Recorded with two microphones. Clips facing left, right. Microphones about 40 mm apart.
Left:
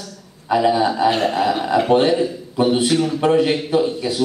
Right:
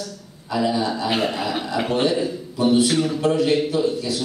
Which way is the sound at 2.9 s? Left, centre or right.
Centre.